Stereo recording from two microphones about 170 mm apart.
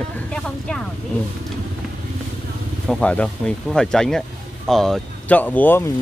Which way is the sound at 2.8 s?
5° left (ahead or behind).